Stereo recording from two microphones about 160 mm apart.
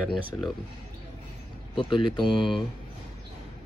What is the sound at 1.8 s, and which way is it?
Speech, 30° left (ahead or behind).